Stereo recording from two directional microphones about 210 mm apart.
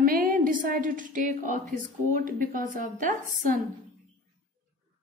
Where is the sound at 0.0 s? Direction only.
45° right (ahead or behind).